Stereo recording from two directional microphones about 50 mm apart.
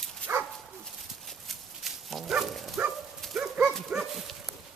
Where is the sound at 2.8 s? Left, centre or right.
Centre.